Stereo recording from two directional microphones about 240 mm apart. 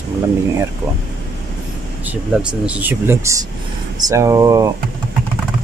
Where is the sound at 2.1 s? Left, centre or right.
Centre.